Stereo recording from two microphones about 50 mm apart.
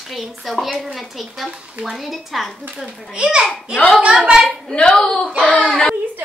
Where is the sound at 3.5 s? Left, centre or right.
Left.